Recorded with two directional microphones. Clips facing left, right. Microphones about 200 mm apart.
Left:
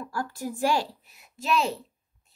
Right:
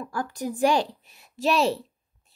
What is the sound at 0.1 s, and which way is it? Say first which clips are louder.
A child's voice: right 3 dB; 20° right (ahead or behind).